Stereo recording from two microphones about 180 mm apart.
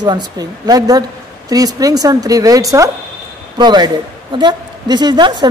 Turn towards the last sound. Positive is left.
turn(degrees=-25)  # may be behind; listen again after turning